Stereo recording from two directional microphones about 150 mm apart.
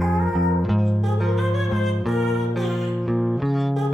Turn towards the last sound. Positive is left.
turn(degrees=0)  # may be behind; listen again after turning